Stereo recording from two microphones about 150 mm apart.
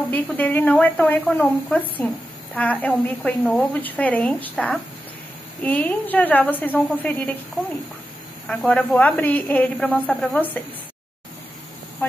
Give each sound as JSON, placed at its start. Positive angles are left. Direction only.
{"t": 0.1, "sound": "a woman's voice", "side_deg": 10}
{"t": 8.5, "sound": "a woman's voice", "side_deg": 5}
{"t": 12.0, "sound": "speech", "side_deg": 15}